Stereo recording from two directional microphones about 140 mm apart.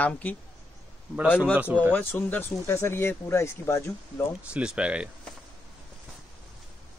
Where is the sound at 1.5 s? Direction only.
10° right (ahead or behind).